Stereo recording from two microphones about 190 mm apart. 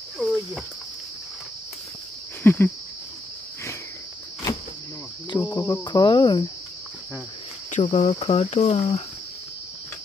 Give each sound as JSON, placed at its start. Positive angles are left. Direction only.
{"t": 0.2, "sound": "speech", "side_deg": 0}
{"t": 2.4, "sound": "a sound", "side_deg": 10}
{"t": 5.3, "sound": "speech", "side_deg": 20}
{"t": 7.7, "sound": "speech", "side_deg": 35}